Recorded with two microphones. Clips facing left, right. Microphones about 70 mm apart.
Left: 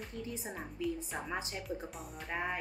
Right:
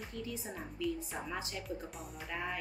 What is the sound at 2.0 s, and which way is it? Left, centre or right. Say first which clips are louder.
Speech: left 1 dB; centre.